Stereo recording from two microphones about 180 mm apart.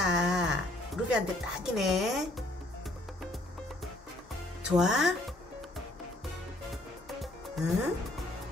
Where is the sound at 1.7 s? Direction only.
Centre (ahead or behind).